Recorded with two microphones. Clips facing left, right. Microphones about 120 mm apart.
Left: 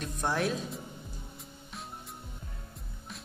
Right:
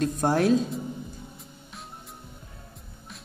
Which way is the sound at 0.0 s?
40° right (ahead or behind).